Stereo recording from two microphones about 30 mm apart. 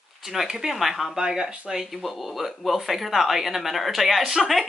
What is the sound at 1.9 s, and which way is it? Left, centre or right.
Speech, centre.